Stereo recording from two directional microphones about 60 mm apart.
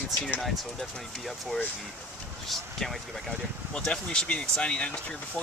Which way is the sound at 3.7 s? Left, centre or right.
Centre.